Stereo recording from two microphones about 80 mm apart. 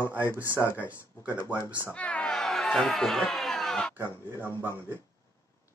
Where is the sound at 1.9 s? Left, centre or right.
Centre.